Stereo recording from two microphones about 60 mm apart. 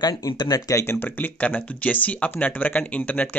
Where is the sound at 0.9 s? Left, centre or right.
Left.